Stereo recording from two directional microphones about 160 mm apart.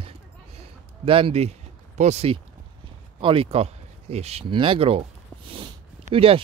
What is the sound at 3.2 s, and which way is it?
Speech, 35° right (ahead or behind).